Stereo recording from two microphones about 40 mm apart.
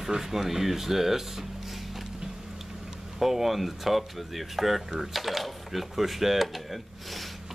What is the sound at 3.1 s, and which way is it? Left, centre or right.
Speech, centre.